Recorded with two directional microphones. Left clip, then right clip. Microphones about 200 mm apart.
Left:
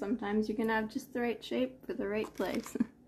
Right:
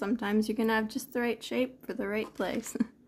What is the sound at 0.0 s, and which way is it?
Speech, 40° right (ahead or behind).